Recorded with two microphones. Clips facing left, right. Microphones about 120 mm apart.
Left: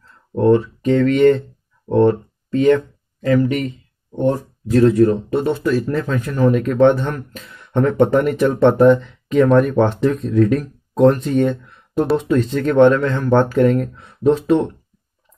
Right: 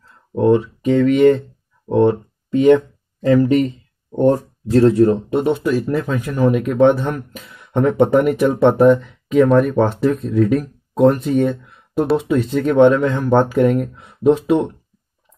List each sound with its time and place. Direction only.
0.3 s speech: 10° right (ahead or behind)
3.2 s speech: 30° right (ahead or behind); by 14.7 s 10° right (ahead or behind)